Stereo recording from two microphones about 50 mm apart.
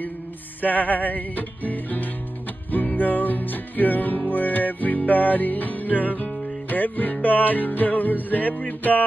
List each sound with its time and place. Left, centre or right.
0.6 s music: left